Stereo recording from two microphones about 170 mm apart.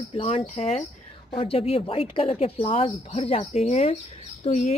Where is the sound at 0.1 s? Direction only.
35° left (ahead or behind).